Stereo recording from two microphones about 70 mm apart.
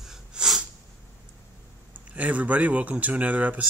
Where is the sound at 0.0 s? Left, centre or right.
Centre.